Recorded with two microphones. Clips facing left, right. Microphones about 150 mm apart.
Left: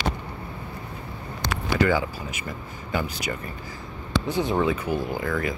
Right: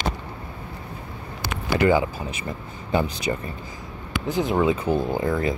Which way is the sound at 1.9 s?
30° right (ahead or behind).